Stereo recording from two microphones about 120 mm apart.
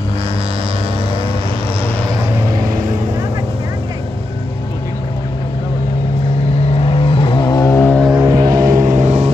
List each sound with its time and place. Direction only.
6.7 s vehicle: 50° left (ahead or behind); by 7.7 s 35° left (ahead or behind)
7.7 s vehicle: 15° left (ahead or behind)
8.1 s music: 20° right (ahead or behind)
8.4 s vehicle: 30° right (ahead or behind)
8.7 s vehicle: 90° right; by 9.3 s 70° right (ahead or behind)